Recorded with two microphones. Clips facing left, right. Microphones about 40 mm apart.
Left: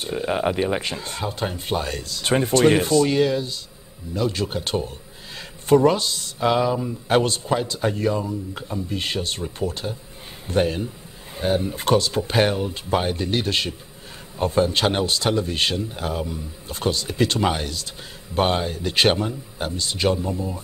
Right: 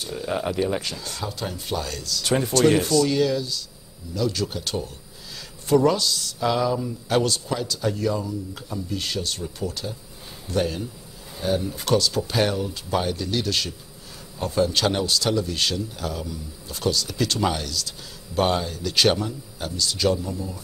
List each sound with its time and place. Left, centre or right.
0.0 s a man's voice: left